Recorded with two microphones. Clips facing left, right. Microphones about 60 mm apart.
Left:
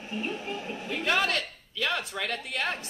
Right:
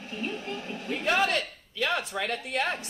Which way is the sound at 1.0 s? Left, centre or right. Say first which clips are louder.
Right 1 dB; right.